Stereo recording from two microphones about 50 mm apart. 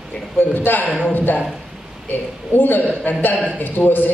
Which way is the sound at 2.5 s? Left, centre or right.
Left.